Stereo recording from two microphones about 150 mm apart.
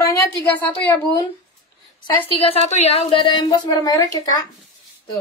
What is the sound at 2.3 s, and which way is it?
A woman's voice, 40° left (ahead or behind).